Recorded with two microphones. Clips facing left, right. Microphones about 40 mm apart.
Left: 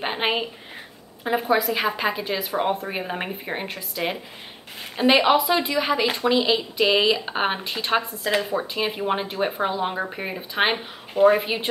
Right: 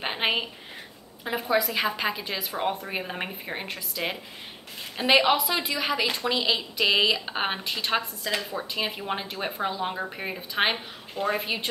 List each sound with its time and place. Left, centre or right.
0.0 s a sound: centre
1.2 s speech: centre
8.2 s a woman's voice: left
8.7 s speech: centre